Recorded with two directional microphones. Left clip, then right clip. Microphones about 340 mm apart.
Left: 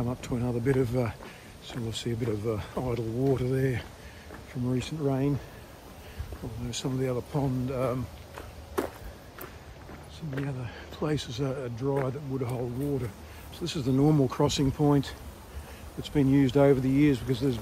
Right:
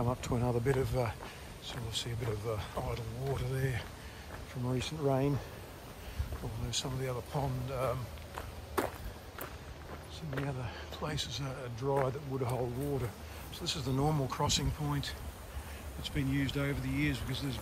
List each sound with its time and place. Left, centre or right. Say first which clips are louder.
0.0 s speech: left 1 dB; centre
6.7 s speech: left 6 dB; centre
10.3 s speech: left 3 dB; centre
13.6 s speech: left 7 dB; centre